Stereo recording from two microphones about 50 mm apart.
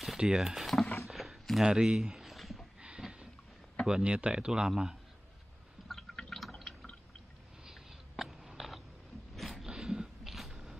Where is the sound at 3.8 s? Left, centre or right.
Centre.